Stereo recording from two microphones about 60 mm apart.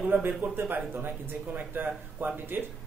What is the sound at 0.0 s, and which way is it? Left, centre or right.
Speech, right.